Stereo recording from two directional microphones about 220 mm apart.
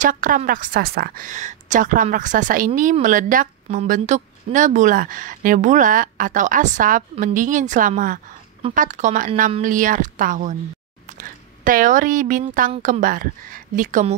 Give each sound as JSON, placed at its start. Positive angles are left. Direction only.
{"t": 0.0, "sound": "a woman's voice", "side_deg": -35}